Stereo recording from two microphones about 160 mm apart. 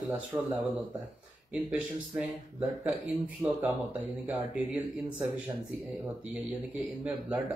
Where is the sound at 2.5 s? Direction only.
Centre (ahead or behind).